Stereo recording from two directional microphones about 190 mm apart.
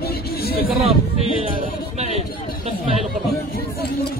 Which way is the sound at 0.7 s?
30° right (ahead or behind).